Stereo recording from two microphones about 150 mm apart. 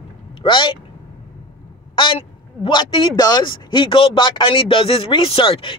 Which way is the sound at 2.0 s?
35° left (ahead or behind).